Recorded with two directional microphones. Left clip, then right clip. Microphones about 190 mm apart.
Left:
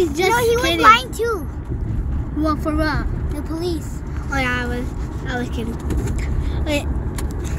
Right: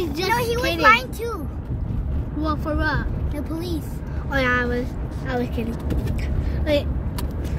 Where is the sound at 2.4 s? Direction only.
5° left (ahead or behind).